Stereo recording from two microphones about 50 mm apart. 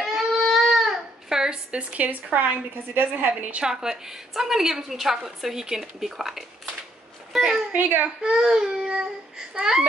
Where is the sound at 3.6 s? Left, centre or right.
Centre.